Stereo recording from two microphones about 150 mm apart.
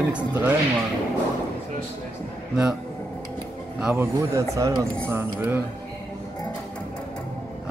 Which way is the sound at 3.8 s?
15° right (ahead or behind).